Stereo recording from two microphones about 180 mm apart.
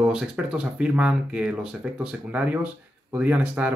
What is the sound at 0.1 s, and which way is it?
Speech, 5° right (ahead or behind).